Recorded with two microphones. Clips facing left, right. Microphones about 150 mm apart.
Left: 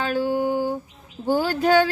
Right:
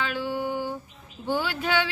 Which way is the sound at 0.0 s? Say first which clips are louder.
Left 6 dB; 45° left (ahead or behind).